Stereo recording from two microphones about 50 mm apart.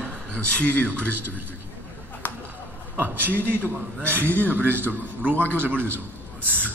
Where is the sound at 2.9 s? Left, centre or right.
Right.